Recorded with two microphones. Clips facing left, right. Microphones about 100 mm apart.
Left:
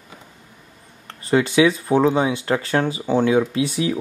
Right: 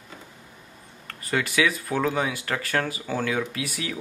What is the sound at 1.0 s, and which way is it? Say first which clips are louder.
Speech: left 8 dB; 25° left (ahead or behind).